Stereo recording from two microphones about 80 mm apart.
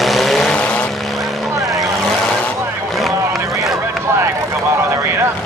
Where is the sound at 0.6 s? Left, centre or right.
Centre.